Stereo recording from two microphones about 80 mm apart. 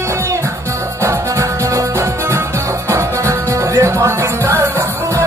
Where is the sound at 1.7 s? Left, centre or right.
Right.